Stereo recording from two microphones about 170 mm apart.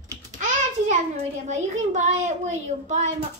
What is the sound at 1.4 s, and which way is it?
A child's voice, 45° right (ahead or behind).